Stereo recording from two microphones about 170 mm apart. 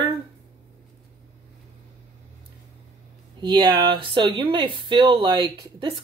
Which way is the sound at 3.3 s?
30° right (ahead or behind).